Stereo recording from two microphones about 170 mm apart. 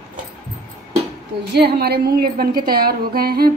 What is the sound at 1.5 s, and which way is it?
A woman's voice, 70° right (ahead or behind).